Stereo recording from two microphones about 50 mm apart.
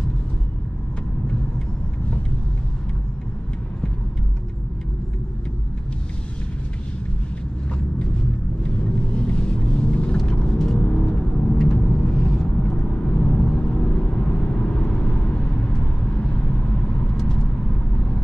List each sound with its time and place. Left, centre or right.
8.6 s vehicle: centre